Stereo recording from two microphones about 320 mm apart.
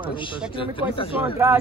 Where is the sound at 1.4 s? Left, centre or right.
Centre.